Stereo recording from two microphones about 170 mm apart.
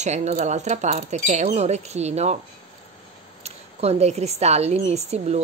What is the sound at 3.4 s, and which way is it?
Speech, 40° right (ahead or behind).